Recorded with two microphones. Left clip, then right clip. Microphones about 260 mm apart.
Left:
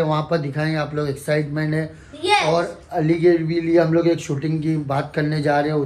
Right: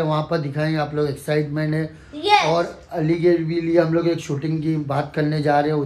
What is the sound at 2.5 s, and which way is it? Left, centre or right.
Speech, centre.